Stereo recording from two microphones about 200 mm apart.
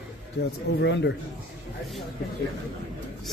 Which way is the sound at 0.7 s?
60° left (ahead or behind).